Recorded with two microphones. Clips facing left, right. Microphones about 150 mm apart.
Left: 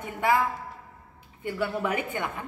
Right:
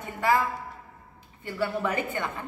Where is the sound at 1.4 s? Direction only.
15° left (ahead or behind).